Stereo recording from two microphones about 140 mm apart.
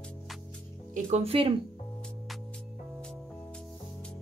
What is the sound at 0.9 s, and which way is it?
Speech, 50° right (ahead or behind).